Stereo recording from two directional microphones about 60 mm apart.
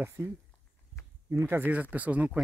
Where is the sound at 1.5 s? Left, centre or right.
Right.